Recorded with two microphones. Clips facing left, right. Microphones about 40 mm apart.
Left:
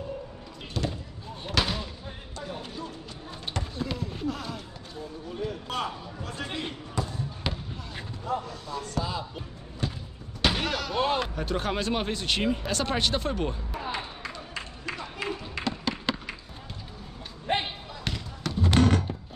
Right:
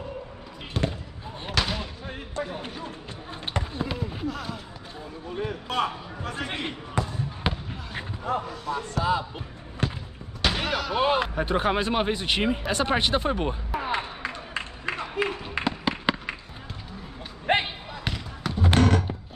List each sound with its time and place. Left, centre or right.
0.8 s basketball bounce: right
1.5 s fireworks: centre
2.6 s music: right
3.4 s basketball bounce: right
4.3 s run: centre
5.5 s a sound: centre
6.2 s basketball bounce: right
7.1 s basketball bounce: right
8.3 s basketball bounce: right
8.6 s speech: right
10.4 s slam: centre; by 16.3 s right
17.5 s basketball bounce: right
18.0 s basketball bounce: centre
19.1 s a sound: centre